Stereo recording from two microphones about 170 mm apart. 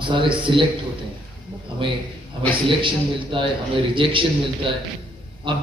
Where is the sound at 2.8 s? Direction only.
30° right (ahead or behind).